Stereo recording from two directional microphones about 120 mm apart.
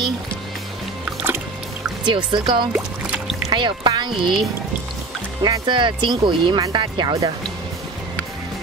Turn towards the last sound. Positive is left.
turn(degrees=-40)  # may be behind; listen again after turning